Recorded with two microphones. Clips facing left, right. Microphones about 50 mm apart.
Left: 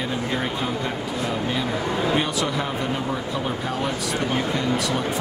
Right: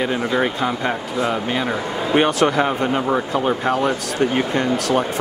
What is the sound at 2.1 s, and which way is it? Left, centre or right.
Speech, right.